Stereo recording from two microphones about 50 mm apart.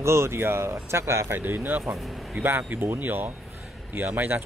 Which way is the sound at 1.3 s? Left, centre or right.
Right.